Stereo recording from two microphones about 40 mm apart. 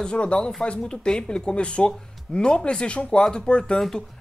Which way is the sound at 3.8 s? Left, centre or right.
Centre.